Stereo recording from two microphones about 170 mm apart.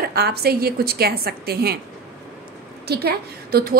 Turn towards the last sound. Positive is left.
turn(degrees=-60)  # may be behind; listen again after turning